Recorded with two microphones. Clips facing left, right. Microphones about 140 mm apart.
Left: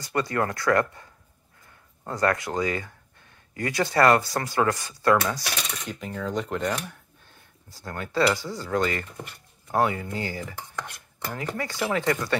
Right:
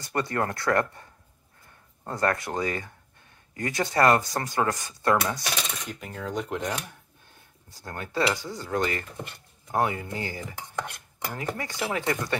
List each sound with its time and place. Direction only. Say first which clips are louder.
0.0 s speech: left 2 dB; 25° right (ahead or behind)
2.0 s speech: left 2 dB; 30° right (ahead or behind)
5.9 s speech: left 3 dB; 5° right (ahead or behind)